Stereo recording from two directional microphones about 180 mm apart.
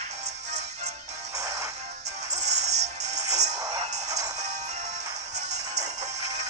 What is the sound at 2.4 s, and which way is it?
Music, 40° right (ahead or behind).